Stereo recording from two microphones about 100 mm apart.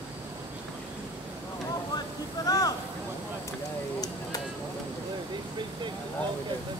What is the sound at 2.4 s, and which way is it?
Speech, 40° left (ahead or behind).